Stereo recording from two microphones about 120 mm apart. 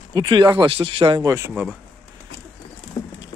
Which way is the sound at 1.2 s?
25° right (ahead or behind).